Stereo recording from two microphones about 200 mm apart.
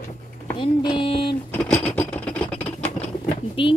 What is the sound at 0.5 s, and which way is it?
Speech, 25° left (ahead or behind).